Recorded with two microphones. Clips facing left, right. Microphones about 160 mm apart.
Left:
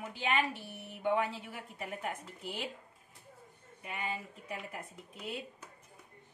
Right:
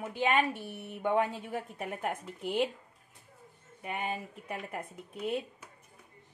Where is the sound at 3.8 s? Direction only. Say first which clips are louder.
Right 4 dB; 55° right (ahead or behind).